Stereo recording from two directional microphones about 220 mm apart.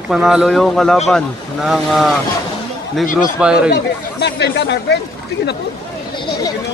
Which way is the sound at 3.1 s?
35° left (ahead or behind).